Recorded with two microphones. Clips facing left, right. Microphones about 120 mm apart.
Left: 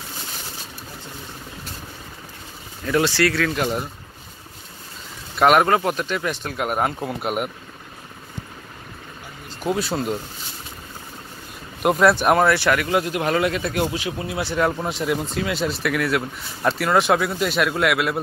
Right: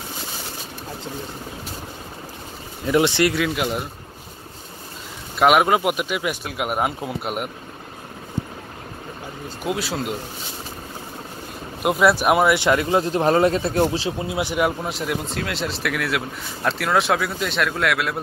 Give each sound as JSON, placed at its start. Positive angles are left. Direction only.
{"t": 2.8, "sound": "speech", "side_deg": -20}
{"t": 3.5, "sound": "speech", "side_deg": -5}
{"t": 5.4, "sound": "speech", "side_deg": -5}
{"t": 9.6, "sound": "speech", "side_deg": 0}
{"t": 11.8, "sound": "speech", "side_deg": -5}
{"t": 12.5, "sound": "speech", "side_deg": -25}
{"t": 14.7, "sound": "speech", "side_deg": 0}